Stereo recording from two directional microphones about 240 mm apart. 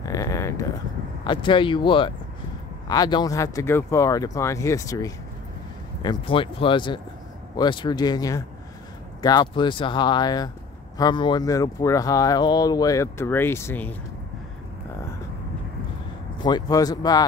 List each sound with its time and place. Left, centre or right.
0.0 s a sound: centre
1.2 s speech: centre
16.4 s speech: centre